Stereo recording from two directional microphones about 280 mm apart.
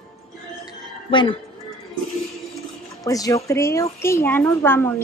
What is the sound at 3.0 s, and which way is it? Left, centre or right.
A woman's voice, centre.